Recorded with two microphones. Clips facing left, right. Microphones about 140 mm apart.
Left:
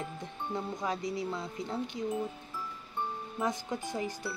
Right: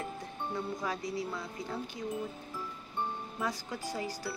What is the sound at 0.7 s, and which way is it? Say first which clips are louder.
Speech: left 2 dB; 20° left (ahead or behind).